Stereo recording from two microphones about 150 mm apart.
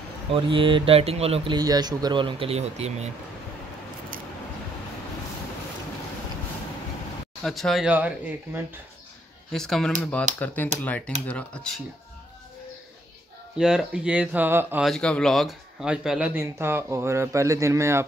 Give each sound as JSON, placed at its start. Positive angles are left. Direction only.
{"t": 0.3, "sound": "speech", "side_deg": -35}
{"t": 4.1, "sound": "a sound", "side_deg": -65}
{"t": 7.4, "sound": "speech", "side_deg": 0}
{"t": 9.5, "sound": "speech", "side_deg": 5}
{"t": 13.6, "sound": "speech", "side_deg": -5}
{"t": 14.8, "sound": "speech", "side_deg": 5}
{"t": 16.3, "sound": "speech", "side_deg": -15}